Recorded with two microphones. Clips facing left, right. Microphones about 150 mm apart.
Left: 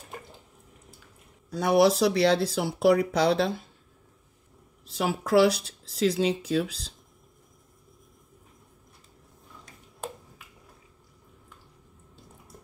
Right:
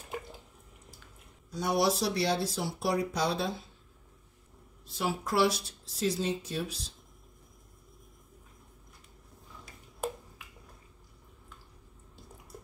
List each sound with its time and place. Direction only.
1.5 s speech: 80° left; by 3.6 s 60° left (ahead or behind)
4.9 s speech: 90° left
9.7 s a sound: 5° right (ahead or behind)